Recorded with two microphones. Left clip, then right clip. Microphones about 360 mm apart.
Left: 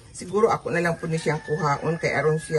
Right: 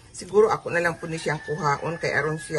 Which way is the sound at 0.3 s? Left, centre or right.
Centre.